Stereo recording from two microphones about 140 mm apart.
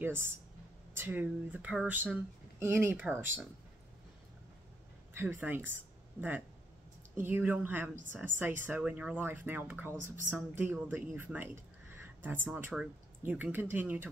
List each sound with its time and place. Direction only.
0.0 s speech: 15° right (ahead or behind)
5.1 s speech: 15° right (ahead or behind)
7.2 s speech: 15° right (ahead or behind)
11.9 s a sound: 15° right (ahead or behind)
12.4 s speech: 15° right (ahead or behind)